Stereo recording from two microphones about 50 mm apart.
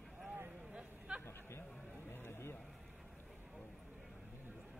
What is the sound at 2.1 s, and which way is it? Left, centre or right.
Vehicle, left.